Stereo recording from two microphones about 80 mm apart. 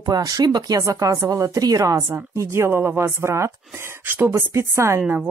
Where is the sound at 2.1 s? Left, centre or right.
Right.